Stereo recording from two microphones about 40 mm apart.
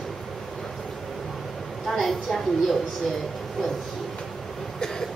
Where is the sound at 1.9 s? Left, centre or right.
Centre.